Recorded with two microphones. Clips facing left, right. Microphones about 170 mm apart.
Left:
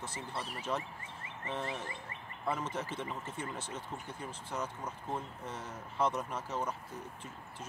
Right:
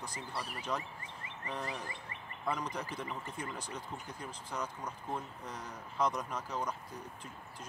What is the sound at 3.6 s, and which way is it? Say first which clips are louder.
Speech: left 1 dB; 30° left (ahead or behind).